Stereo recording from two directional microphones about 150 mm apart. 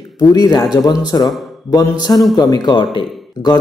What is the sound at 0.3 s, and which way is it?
A man's voice, 25° left (ahead or behind).